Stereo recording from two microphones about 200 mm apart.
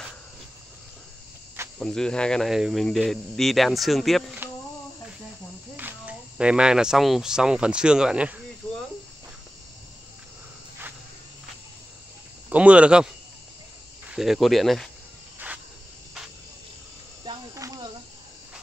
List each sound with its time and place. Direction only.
1.8 s speech: 5° left (ahead or behind)
4.4 s a sound: 10° right (ahead or behind)
5.8 s speech: 10° right (ahead or behind)
8.6 s a sound: 5° left (ahead or behind)
12.4 s speech: 5° right (ahead or behind)
14.1 s speech: centre (ahead or behind)
17.2 s cricket: 20° right (ahead or behind)